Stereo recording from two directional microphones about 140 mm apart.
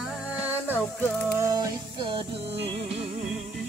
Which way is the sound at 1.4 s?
25° right (ahead or behind).